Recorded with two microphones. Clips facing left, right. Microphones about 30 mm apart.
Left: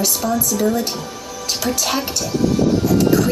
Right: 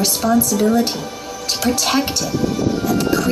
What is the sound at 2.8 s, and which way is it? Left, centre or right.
Music, right.